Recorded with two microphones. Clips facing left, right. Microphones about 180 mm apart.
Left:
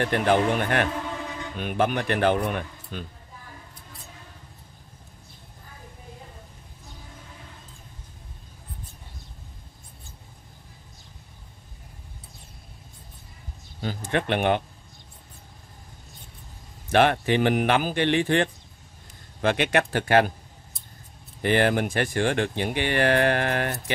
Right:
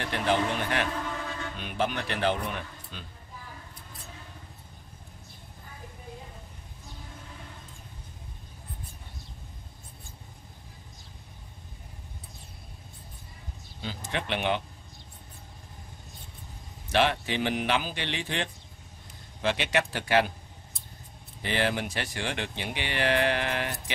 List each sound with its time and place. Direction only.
0.0 s speech: 55° left (ahead or behind)
13.7 s speech: 50° left (ahead or behind)
16.9 s speech: 55° left (ahead or behind)
21.4 s speech: 50° left (ahead or behind)